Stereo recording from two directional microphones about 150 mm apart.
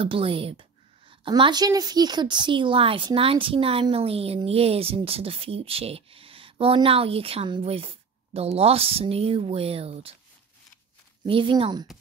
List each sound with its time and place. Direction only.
0.0 s a woman's voice: 35° right (ahead or behind)
11.2 s a woman's voice: 35° right (ahead or behind)